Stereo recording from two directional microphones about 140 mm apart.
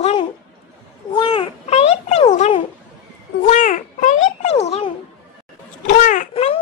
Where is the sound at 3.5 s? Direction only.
60° left (ahead or behind).